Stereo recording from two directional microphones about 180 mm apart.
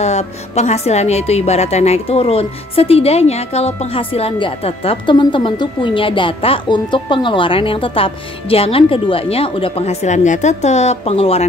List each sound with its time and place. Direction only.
0.0 s a woman's voice: 40° left (ahead or behind)